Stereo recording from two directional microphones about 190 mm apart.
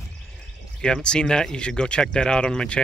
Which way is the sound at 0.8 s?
5° left (ahead or behind).